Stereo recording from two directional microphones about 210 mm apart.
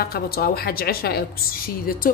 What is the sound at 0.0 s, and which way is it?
A woman's voice, 45° left (ahead or behind).